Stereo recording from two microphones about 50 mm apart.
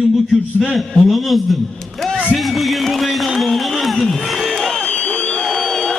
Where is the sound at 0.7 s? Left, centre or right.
Centre.